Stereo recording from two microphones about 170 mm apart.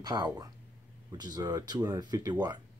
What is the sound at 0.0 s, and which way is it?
Speech, 25° right (ahead or behind).